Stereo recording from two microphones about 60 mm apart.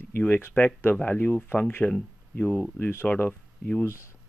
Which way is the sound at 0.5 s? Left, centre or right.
Left.